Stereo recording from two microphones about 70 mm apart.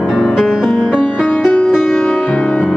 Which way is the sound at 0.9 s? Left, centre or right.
Centre.